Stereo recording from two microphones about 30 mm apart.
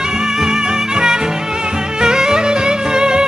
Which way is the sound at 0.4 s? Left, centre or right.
Centre.